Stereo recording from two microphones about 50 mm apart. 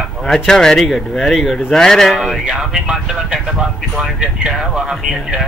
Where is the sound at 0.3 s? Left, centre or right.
Centre.